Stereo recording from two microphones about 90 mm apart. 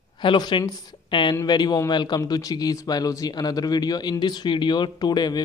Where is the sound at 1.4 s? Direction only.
50° left (ahead or behind).